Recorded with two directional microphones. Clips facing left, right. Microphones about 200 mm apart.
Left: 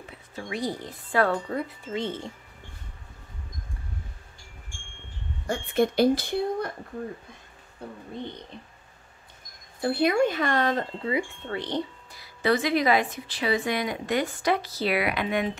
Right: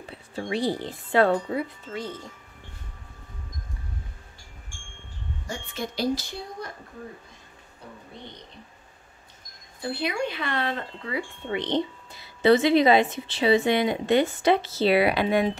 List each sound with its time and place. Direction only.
0.1 s speech: 30° right (ahead or behind)
1.9 s speech: 25° left (ahead or behind)
5.5 s speech: 55° left (ahead or behind)
7.8 s speech: 50° left (ahead or behind)
9.8 s speech: 50° left (ahead or behind)
11.0 s speech: 20° left (ahead or behind)
11.4 s a woman's voice: 20° right (ahead or behind)